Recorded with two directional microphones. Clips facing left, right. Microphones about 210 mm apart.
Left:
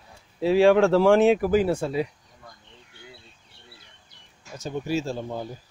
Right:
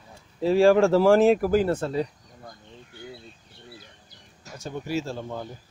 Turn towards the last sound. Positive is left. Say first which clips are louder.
# left 2 dB
turn(degrees=15)  # may be behind; listen again after turning